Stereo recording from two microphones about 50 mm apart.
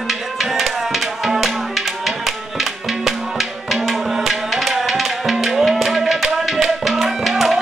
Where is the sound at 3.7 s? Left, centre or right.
Centre.